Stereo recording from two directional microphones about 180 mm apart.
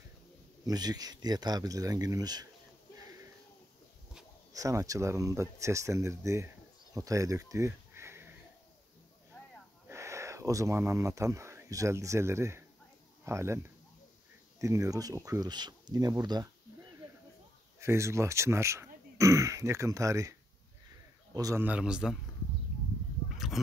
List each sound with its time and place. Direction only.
0.7 s speech: 20° right (ahead or behind)
4.5 s speech: 20° right (ahead or behind)
9.8 s speech: 15° right (ahead or behind)
17.7 s a man's voice: 15° right (ahead or behind)
21.6 s a man's voice: 5° right (ahead or behind)
23.3 s a sound: centre (ahead or behind)